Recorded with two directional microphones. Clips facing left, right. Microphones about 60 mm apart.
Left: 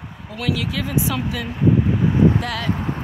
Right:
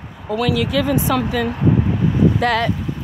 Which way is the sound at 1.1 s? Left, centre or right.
Right.